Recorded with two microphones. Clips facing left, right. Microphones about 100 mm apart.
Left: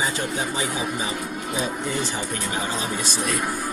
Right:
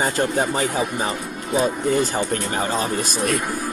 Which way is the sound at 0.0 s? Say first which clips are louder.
Right 5 dB; 50° right (ahead or behind).